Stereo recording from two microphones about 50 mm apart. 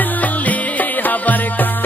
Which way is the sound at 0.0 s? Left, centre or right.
Left.